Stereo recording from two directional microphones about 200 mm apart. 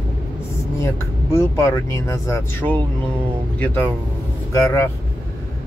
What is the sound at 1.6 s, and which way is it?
Speech, 15° left (ahead or behind).